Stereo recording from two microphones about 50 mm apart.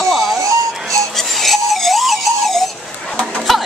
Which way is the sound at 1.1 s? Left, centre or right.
Centre.